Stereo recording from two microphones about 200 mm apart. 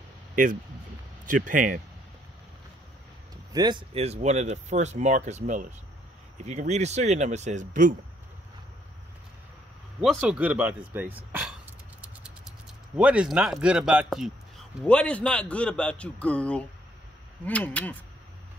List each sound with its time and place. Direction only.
1.2 s speech: 40° right (ahead or behind)
3.5 s speech: 25° right (ahead or behind); by 7.9 s 40° right (ahead or behind)
9.9 s a man's voice: 5° right (ahead or behind)